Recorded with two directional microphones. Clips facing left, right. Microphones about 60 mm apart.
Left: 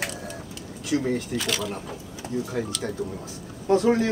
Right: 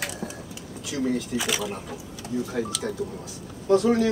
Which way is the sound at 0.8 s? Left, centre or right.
Left.